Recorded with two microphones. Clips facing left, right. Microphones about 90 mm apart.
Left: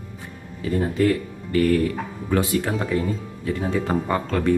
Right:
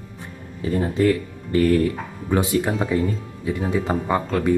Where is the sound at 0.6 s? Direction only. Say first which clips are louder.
Right 1 dB; 30° right (ahead or behind).